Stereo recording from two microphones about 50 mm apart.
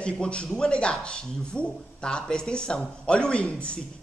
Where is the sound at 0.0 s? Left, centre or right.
Left.